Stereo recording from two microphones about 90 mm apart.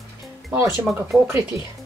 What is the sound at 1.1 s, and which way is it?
Speech, 40° right (ahead or behind).